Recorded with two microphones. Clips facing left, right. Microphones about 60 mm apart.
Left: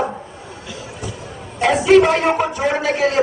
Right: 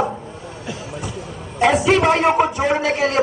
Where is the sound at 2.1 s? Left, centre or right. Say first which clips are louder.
Right 2 dB; centre.